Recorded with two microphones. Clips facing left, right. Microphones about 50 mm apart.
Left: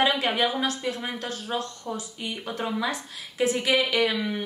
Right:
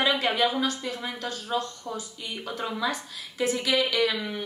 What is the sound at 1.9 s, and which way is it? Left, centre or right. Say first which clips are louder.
Speech: left 2 dB; centre.